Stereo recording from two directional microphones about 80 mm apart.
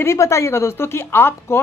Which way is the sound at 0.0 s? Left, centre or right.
Left.